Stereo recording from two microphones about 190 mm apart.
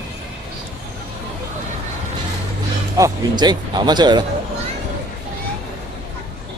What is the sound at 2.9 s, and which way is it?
Speech, 20° right (ahead or behind).